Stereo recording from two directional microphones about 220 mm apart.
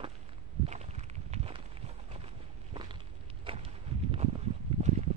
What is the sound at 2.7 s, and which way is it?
Walk, 25° right (ahead or behind).